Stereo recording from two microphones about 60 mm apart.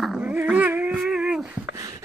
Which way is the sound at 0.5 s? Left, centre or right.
Right.